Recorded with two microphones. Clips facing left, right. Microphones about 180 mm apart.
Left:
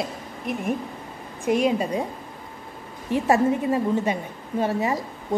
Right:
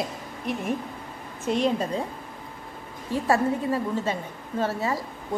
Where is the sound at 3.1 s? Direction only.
20° left (ahead or behind).